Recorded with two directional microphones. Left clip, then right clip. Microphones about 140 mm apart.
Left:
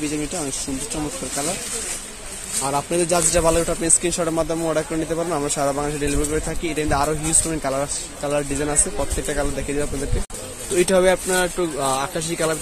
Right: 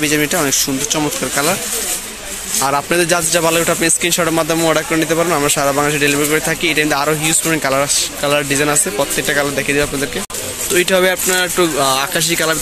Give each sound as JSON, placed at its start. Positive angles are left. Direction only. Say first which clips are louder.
{"t": 2.6, "sound": "speech", "louder": "right 7 dB", "side_deg": -20}
{"t": 3.3, "sound": "speech", "louder": "right 6 dB", "side_deg": 0}